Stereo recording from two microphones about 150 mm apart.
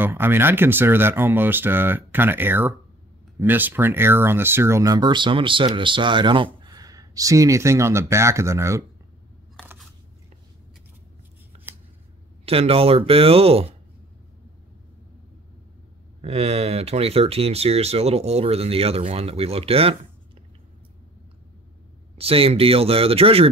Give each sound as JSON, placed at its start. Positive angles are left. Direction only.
{"t": 0.0, "sound": "speech", "side_deg": -15}
{"t": 11.5, "sound": "a sound", "side_deg": -45}
{"t": 12.4, "sound": "speech", "side_deg": -40}
{"t": 16.2, "sound": "speech", "side_deg": -40}
{"t": 22.1, "sound": "speech", "side_deg": -40}